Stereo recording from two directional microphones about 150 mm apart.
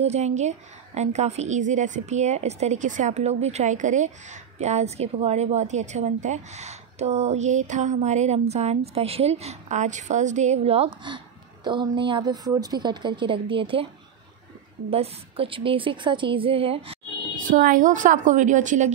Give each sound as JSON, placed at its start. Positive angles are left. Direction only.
{"t": 0.0, "sound": "a woman's voice", "side_deg": -50}
{"t": 14.9, "sound": "a woman's voice", "side_deg": -40}
{"t": 17.5, "sound": "a woman's voice", "side_deg": -65}